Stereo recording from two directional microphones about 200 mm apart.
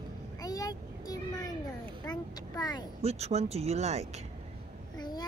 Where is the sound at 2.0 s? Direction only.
20° left (ahead or behind).